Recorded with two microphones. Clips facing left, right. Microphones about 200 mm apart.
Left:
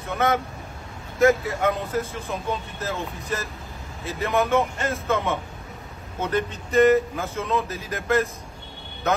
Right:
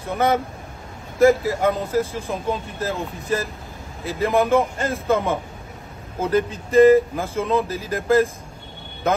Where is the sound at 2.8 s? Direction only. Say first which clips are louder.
Right 5 dB; 30° right (ahead or behind).